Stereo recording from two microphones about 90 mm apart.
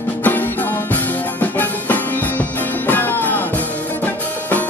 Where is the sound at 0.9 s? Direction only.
20° left (ahead or behind).